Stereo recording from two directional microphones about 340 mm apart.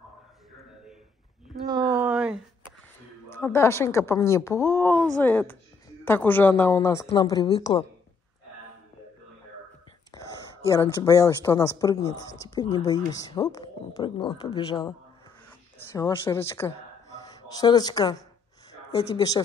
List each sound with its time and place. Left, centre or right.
1.7 s a sound: centre
3.3 s speech: centre
10.1 s whispering: centre
10.7 s speech: centre